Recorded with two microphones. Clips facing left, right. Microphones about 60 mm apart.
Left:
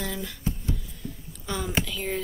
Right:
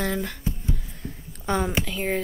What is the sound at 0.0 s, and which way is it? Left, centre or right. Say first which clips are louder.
Speech: right 6 dB; right.